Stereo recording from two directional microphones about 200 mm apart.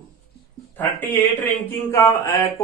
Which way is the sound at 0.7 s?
10° left (ahead or behind).